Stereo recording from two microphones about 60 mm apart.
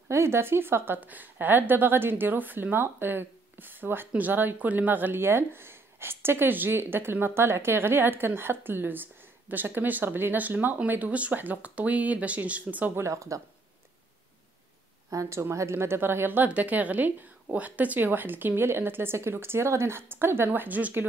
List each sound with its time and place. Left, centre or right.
0.1 s speech: right
12.9 s speech: right
15.0 s a woman's voice: right
16.4 s speech: right